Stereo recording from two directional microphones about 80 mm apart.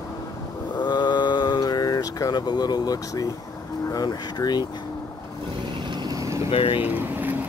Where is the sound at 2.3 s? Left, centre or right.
Left.